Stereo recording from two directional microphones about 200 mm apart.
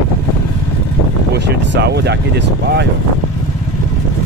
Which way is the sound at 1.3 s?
55° right (ahead or behind).